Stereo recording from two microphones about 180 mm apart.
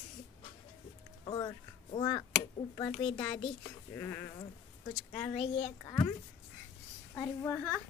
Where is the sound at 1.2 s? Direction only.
20° left (ahead or behind).